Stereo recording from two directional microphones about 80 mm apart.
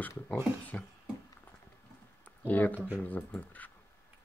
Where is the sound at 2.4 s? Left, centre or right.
Left.